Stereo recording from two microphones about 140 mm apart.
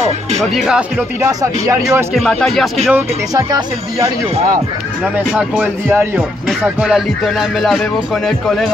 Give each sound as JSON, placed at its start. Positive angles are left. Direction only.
{"t": 0.4, "sound": "speech", "side_deg": -5}
{"t": 3.3, "sound": "speech", "side_deg": -25}
{"t": 5.1, "sound": "speech", "side_deg": -10}